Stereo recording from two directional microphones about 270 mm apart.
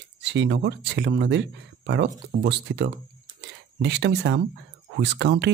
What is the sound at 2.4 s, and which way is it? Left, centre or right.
Speech, right.